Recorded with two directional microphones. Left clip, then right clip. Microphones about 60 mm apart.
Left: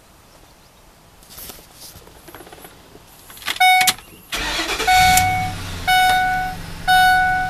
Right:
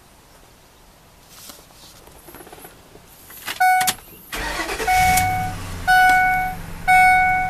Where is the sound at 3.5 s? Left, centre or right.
Centre.